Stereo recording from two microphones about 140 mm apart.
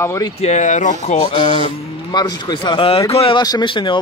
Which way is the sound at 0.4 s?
55° left (ahead or behind).